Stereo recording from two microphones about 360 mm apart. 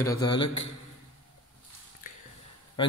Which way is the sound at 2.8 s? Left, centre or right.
Centre.